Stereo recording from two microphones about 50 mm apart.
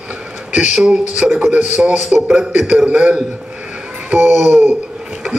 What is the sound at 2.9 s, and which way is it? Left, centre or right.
Speech, right.